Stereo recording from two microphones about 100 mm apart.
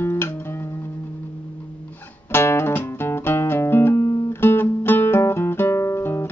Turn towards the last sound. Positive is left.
turn(degrees=25)  # may be behind; listen again after turning